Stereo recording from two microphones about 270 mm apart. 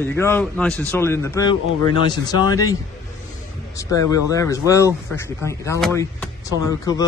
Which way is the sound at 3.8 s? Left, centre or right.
Centre.